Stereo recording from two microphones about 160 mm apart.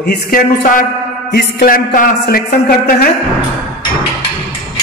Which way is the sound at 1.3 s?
90° left.